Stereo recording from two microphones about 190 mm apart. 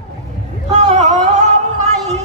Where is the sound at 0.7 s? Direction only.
35° right (ahead or behind).